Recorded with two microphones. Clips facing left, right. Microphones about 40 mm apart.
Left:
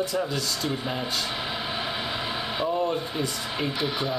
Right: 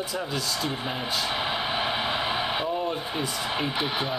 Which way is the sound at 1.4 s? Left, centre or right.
Centre.